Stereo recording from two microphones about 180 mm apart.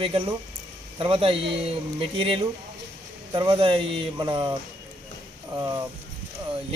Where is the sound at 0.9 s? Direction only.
30° right (ahead or behind).